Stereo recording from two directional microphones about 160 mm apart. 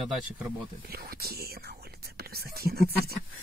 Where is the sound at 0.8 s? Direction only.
75° right (ahead or behind).